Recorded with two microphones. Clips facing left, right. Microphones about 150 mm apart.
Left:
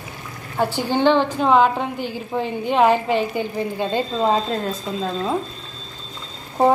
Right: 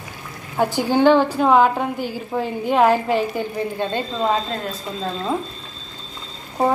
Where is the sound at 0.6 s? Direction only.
10° right (ahead or behind).